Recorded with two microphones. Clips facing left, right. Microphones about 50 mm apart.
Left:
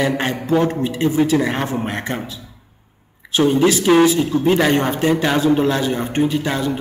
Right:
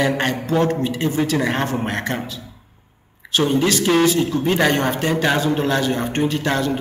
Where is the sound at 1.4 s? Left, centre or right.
Centre.